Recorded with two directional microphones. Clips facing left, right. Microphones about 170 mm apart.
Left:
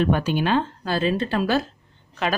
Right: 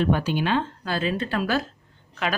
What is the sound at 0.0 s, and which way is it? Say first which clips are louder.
A woman's voice: left 2 dB; 55° left (ahead or behind).